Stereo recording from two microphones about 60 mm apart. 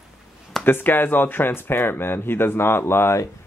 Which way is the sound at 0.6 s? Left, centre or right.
Left.